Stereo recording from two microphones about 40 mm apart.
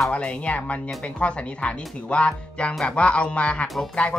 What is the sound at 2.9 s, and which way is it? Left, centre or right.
Music, left.